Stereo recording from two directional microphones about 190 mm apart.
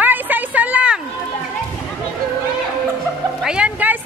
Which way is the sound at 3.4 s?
5° right (ahead or behind).